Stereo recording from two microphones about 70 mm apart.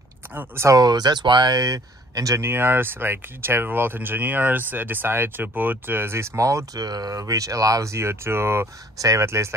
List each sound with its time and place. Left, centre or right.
0.7 s speech: right
1.6 s speech: right
2.4 s speech: right